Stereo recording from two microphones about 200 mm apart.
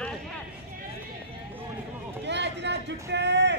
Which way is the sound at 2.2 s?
60° right (ahead or behind).